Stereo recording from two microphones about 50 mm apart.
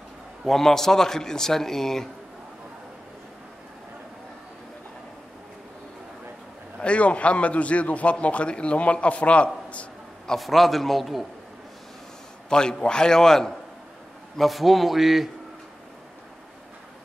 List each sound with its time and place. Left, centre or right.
0.5 s a man's voice: centre
6.8 s a man's voice: left
10.2 s a man's voice: centre
12.4 s a man's voice: centre